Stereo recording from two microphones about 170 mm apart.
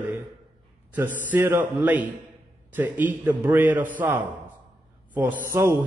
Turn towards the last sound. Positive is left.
turn(degrees=-15)  # may be behind; listen again after turning